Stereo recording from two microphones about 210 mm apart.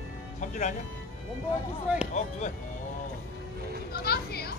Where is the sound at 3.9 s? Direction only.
50° left (ahead or behind).